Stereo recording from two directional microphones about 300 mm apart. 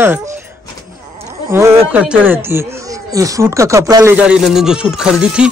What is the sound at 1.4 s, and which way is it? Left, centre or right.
A man's voice, centre.